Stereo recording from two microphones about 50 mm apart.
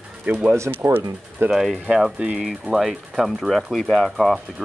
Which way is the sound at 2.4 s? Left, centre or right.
Centre.